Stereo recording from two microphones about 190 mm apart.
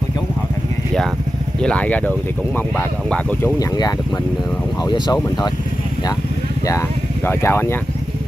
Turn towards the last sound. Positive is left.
turn(degrees=10)  # may be behind; listen again after turning